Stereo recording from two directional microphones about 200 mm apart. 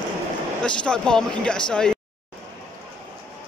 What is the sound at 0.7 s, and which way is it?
Speech, 5° left (ahead or behind).